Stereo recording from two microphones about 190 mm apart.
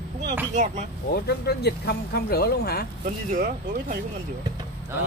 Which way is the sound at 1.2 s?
60° left (ahead or behind).